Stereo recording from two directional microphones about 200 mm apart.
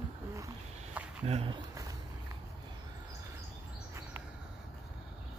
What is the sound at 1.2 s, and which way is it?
Speech, 30° right (ahead or behind).